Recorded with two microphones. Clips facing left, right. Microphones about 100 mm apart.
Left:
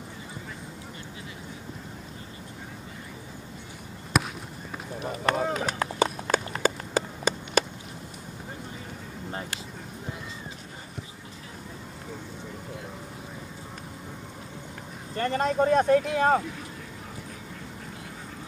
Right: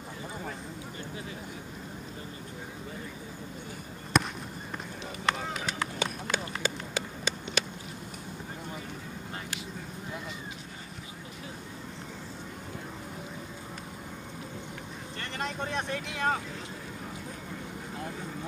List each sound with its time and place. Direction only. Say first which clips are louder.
4.1 s basketball bounce: even; 5° left (ahead or behind)
5.2 s run: left 5 dB; 45° left (ahead or behind)
15.1 s speech: left 12 dB; 40° left (ahead or behind)